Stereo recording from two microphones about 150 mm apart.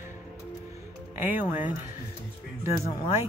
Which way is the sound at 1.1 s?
10° right (ahead or behind).